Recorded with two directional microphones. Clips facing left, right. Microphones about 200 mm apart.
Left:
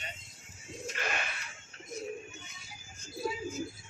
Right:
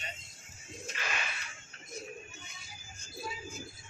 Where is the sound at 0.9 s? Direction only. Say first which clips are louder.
Left 3 dB; 50° left (ahead or behind).